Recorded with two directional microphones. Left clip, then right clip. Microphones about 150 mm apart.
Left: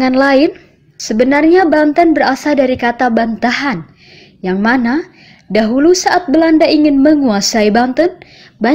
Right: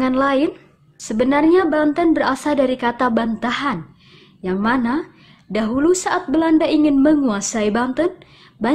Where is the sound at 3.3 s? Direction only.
10° left (ahead or behind).